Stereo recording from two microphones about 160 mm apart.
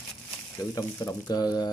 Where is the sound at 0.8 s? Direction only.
20° left (ahead or behind).